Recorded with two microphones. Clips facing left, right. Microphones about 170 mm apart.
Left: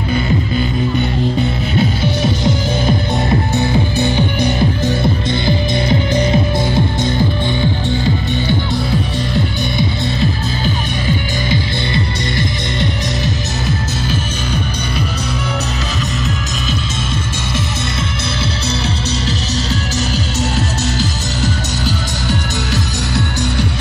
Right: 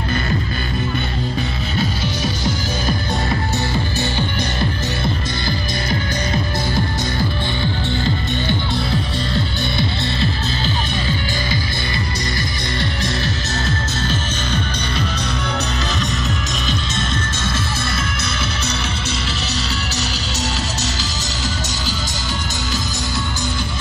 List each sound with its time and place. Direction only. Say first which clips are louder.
1.8 s music: left 6 dB; 20° left (ahead or behind)
12.8 s music: left 3 dB; 15° left (ahead or behind)